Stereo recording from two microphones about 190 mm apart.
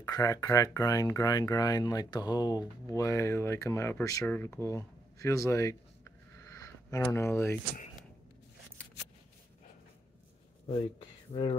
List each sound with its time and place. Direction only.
0.0 s speech: 20° left (ahead or behind)